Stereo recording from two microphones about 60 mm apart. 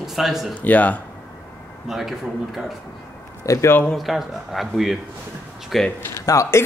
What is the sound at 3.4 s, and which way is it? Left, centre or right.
Speech, left.